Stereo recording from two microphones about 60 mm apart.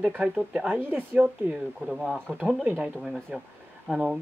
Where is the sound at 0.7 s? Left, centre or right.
Right.